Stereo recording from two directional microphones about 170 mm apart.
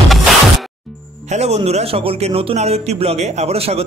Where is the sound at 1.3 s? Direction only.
40° right (ahead or behind).